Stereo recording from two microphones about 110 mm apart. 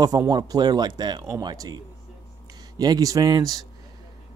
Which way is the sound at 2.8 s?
35° right (ahead or behind).